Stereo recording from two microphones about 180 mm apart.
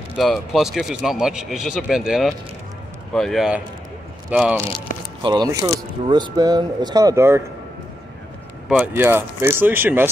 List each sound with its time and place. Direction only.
0.2 s speech: centre (ahead or behind)
5.2 s speech: 25° right (ahead or behind)
8.6 s speech: 5° right (ahead or behind)